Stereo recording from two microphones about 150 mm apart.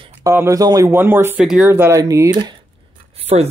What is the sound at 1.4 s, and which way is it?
Speech, 5° right (ahead or behind).